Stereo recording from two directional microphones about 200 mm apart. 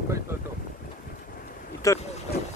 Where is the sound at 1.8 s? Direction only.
15° left (ahead or behind).